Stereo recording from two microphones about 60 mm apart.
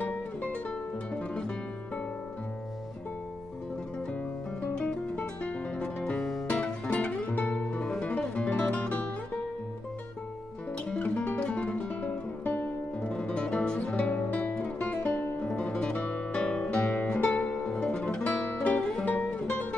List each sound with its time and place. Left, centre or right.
0.0 s music: left
5.4 s music: left
10.9 s music: left
18.2 s music: left